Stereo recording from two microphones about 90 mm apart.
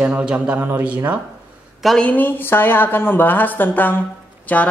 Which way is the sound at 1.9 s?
20° left (ahead or behind).